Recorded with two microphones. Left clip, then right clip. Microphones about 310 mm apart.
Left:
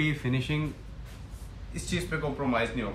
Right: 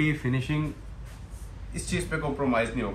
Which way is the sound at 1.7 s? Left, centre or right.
Centre.